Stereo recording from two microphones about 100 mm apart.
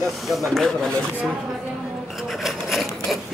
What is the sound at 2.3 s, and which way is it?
Wood, centre (ahead or behind).